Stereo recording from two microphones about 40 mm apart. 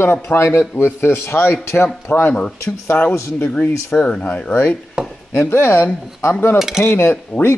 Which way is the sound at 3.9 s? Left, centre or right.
Left.